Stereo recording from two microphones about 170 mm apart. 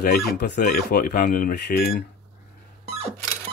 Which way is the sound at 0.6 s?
55° left (ahead or behind).